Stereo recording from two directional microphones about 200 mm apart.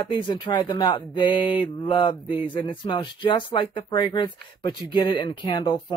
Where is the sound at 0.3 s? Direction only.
20° left (ahead or behind).